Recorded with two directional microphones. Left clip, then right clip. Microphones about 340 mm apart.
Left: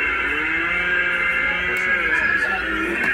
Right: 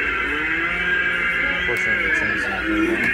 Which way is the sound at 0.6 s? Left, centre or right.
Centre.